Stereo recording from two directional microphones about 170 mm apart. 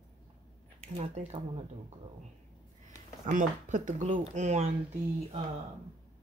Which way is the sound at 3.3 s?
50° right (ahead or behind).